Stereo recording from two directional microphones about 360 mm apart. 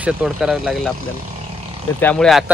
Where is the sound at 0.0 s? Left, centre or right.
Centre.